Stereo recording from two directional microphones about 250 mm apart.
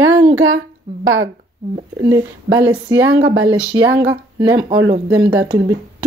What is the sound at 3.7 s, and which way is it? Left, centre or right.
A woman's voice, centre.